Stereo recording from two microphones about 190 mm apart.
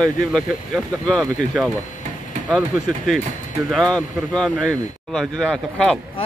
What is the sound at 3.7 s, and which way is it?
Speech, 5° left (ahead or behind).